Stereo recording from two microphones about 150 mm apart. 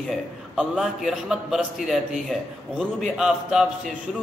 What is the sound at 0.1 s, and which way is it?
Speech, centre (ahead or behind).